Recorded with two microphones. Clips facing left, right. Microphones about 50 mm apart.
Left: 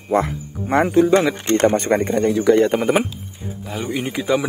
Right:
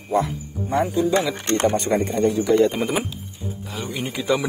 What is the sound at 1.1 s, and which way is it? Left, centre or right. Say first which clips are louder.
Speech: left 5 dB; left.